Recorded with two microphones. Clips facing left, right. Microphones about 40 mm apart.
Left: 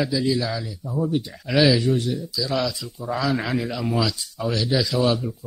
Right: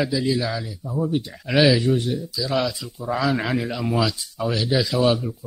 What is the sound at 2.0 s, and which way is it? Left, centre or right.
A man's voice, centre.